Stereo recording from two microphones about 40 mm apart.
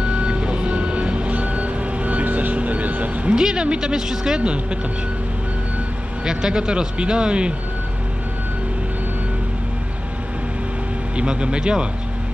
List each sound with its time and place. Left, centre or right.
0.0 s reversing beeps: right
3.3 s speech: centre
4.4 s speech: right
6.2 s speech: centre
11.1 s speech: right